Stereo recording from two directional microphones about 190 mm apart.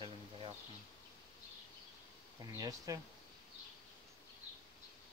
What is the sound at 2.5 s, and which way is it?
Speech, 20° right (ahead or behind).